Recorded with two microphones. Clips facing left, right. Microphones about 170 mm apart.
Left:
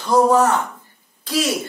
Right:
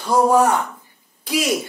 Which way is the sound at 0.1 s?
10° right (ahead or behind).